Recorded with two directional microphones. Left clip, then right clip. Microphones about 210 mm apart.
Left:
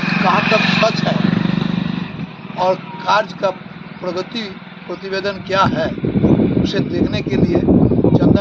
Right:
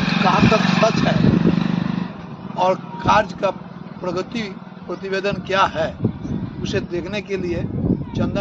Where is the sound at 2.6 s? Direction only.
10° right (ahead or behind).